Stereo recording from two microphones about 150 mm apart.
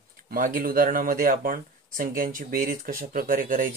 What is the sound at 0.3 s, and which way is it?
Speech, 75° right (ahead or behind).